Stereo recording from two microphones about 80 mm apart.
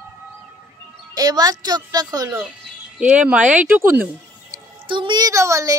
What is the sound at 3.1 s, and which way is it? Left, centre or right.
Speech, centre.